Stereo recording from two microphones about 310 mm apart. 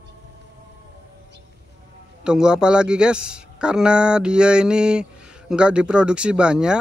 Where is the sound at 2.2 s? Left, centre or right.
Centre.